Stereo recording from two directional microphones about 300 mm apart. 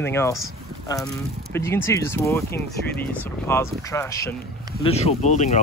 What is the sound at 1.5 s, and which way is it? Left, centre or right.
Speech, centre.